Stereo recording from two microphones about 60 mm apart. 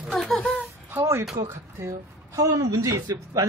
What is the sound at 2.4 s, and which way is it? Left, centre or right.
Speech, right.